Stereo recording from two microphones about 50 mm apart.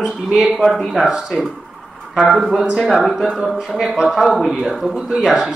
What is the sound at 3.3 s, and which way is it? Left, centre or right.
Speech, centre.